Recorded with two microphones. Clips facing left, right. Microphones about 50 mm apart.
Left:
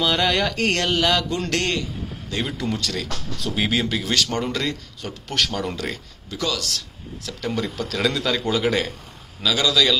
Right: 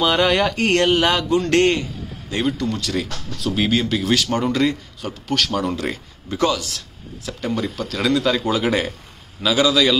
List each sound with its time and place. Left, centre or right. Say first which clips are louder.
0.0 s speech: right 4 dB; centre
0.7 s speech: right 6 dB; right
2.4 s speech: right 5 dB; centre
2.8 s speech: right 3 dB; centre
6.5 s speech: right 3 dB; right
7.4 s speech: right 2 dB; centre